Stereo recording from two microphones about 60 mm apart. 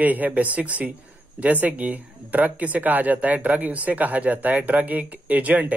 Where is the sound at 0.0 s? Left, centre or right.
Right.